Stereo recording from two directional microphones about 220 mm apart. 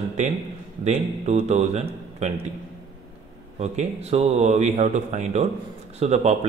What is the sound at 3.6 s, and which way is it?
Speech, 30° right (ahead or behind).